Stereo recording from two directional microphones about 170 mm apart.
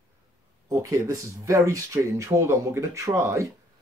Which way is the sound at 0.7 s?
20° right (ahead or behind).